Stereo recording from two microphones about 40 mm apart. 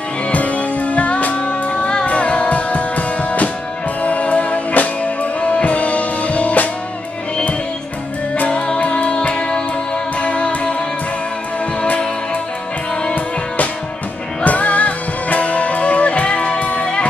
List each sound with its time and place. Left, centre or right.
0.3 s music: left
8.5 s music: left
14.4 s music: left